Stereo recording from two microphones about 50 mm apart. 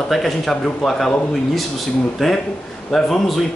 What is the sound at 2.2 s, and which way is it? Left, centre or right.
Speech, centre.